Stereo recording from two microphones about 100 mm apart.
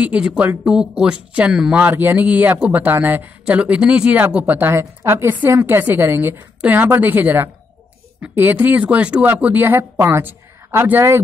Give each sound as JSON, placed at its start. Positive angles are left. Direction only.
{"t": 0.0, "sound": "speech", "side_deg": -10}